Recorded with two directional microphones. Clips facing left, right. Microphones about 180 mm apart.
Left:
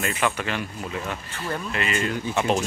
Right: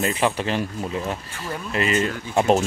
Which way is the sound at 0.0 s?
30° right (ahead or behind).